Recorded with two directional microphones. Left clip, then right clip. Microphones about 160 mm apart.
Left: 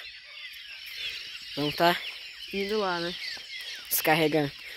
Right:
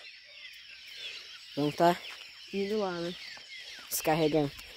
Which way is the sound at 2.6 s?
30° left (ahead or behind).